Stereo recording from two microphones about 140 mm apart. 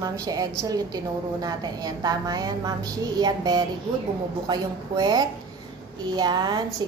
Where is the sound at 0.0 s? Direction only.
25° right (ahead or behind).